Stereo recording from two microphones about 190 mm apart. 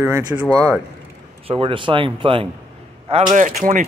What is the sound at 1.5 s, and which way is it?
Speech, 30° right (ahead or behind).